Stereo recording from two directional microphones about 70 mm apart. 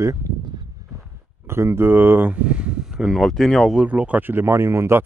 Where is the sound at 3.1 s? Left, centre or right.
Centre.